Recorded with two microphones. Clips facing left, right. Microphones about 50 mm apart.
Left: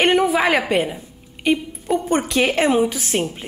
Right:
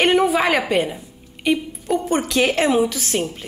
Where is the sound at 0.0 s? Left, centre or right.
Centre.